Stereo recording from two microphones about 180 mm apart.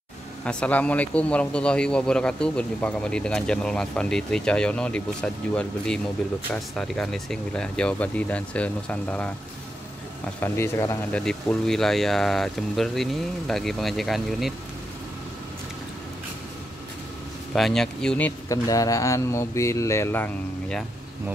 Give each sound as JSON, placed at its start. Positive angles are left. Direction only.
{"t": 0.5, "sound": "a man's voice", "side_deg": 5}
{"t": 10.4, "sound": "speech", "side_deg": 15}
{"t": 11.2, "sound": "a man's voice", "side_deg": 5}
{"t": 17.6, "sound": "a man's voice", "side_deg": 0}
{"t": 18.5, "sound": "speech", "side_deg": 20}